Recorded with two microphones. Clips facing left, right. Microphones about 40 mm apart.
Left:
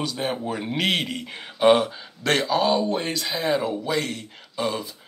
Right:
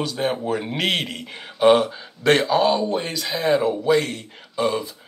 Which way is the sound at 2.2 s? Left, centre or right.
Centre.